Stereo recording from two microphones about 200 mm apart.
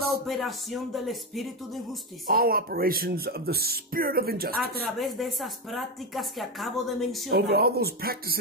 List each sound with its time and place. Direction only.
0.3 s speech: centre (ahead or behind)
2.2 s speech: 50° right (ahead or behind)
4.9 s speech: centre (ahead or behind)
7.2 s speech: 55° right (ahead or behind)